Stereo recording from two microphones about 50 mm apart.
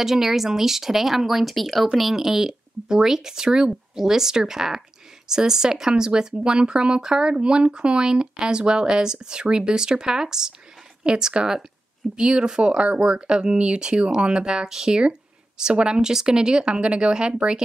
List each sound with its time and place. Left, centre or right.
0.0 s speech: centre